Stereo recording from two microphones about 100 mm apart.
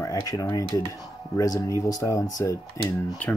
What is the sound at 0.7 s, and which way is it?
Speech, 40° left (ahead or behind).